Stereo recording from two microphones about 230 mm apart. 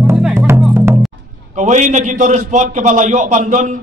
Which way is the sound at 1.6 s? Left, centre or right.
Right.